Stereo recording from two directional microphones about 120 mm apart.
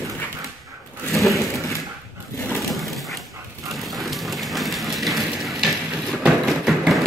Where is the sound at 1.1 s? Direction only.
Centre (ahead or behind).